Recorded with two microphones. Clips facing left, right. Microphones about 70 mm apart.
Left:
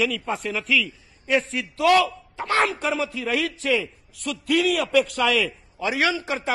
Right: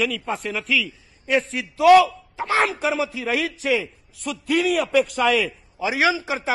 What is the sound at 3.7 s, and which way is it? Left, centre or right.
Speech, centre.